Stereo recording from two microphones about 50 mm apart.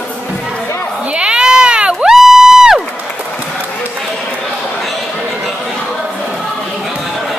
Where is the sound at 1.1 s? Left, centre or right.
Centre.